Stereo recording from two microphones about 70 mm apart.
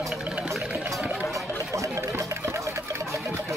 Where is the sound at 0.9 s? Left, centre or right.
Centre.